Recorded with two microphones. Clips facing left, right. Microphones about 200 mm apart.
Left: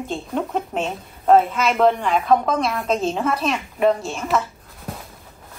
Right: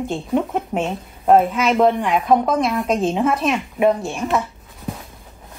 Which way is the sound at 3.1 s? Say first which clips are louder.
Right 4 dB; 15° right (ahead or behind).